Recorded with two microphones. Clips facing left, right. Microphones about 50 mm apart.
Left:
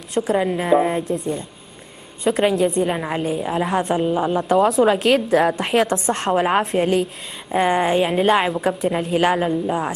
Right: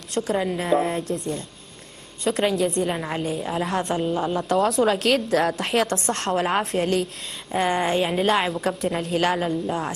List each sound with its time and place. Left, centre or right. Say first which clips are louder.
0.1 s a woman's voice: left 4 dB; centre
2.2 s a woman's voice: left 4 dB; centre